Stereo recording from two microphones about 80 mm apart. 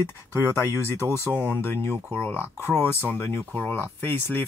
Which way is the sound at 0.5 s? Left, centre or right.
Left.